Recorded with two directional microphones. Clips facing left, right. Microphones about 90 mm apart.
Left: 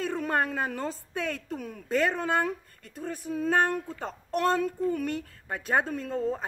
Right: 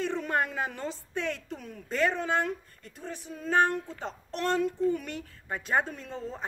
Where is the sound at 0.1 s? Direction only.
45° left (ahead or behind).